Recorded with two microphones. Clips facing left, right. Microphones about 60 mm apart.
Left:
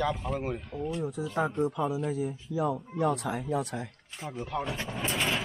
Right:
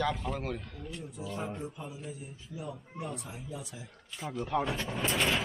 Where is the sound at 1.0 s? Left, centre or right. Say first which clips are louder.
Left 8 dB; left.